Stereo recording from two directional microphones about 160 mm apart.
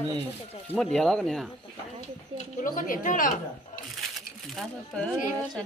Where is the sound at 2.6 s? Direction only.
60° left (ahead or behind).